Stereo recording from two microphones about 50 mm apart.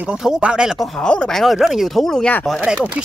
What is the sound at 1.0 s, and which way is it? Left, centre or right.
Speech, centre.